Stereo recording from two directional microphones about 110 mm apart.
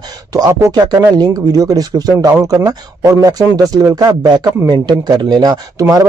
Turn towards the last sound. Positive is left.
turn(degrees=-30)  # may be behind; listen again after turning